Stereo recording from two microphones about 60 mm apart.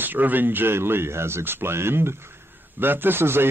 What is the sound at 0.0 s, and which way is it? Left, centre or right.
Speech, right.